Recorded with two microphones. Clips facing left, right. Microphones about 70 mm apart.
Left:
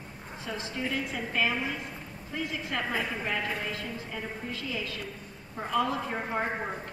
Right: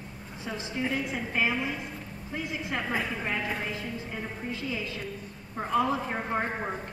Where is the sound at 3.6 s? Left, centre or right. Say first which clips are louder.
Right 1 dB; centre.